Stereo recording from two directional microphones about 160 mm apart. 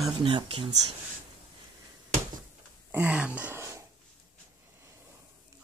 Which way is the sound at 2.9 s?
10° right (ahead or behind).